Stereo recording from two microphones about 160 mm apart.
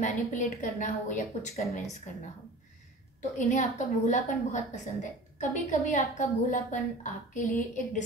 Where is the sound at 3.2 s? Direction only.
50° left (ahead or behind).